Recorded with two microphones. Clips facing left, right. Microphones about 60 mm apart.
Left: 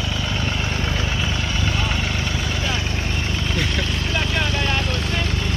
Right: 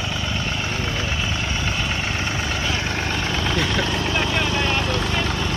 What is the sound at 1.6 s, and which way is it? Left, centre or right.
Vehicle, centre.